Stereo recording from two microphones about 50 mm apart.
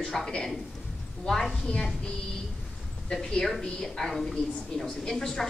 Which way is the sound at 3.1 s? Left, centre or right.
Centre.